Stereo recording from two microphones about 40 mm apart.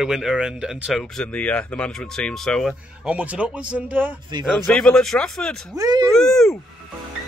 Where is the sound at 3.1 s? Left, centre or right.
Right.